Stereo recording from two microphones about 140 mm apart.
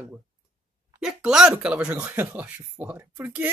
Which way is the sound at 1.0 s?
5° right (ahead or behind).